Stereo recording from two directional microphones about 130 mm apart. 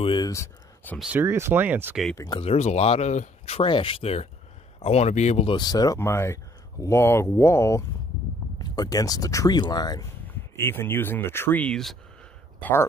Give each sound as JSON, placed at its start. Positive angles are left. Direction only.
{"t": 0.0, "sound": "speech", "side_deg": 40}
{"t": 0.3, "sound": "a sound", "side_deg": 20}
{"t": 0.9, "sound": "speech", "side_deg": -5}
{"t": 1.2, "sound": "speech", "side_deg": -20}
{"t": 2.1, "sound": "speech", "side_deg": 35}
{"t": 2.4, "sound": "speech", "side_deg": 55}
{"t": 5.5, "sound": "speech", "side_deg": 30}
{"t": 5.9, "sound": "speech", "side_deg": 20}
{"t": 10.2, "sound": "speech", "side_deg": 15}
{"t": 12.5, "sound": "speech", "side_deg": 15}